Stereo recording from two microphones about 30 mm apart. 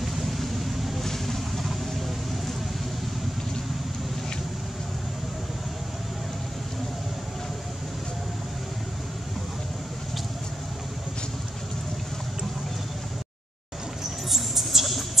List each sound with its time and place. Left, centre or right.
0.0 s vehicle: centre
1.0 s vehicle: centre
14.3 s a sound: centre